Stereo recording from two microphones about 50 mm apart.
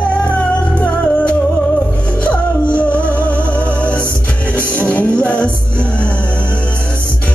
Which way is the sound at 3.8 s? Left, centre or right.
Right.